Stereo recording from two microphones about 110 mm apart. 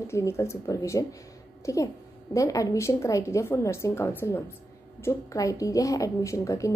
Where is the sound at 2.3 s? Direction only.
30° left (ahead or behind).